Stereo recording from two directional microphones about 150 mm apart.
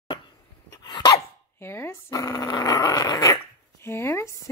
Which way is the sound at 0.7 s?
30° left (ahead or behind).